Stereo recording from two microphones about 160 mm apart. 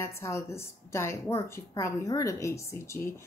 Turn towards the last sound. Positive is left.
turn(degrees=15)  # may be behind; listen again after turning